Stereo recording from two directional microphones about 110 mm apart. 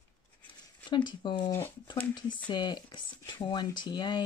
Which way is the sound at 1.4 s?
25° left (ahead or behind).